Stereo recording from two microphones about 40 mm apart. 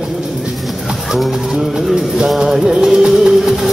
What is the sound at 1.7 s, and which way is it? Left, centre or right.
Music, centre.